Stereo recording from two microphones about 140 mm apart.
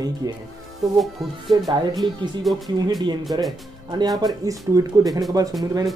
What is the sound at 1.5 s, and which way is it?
Speech, 35° right (ahead or behind).